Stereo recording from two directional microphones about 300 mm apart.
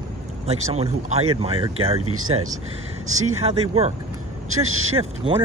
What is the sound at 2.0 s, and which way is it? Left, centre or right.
Speech, right.